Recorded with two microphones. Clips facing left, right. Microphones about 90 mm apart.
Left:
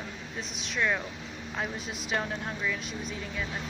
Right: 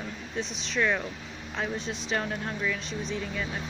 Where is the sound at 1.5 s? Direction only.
5° left (ahead or behind).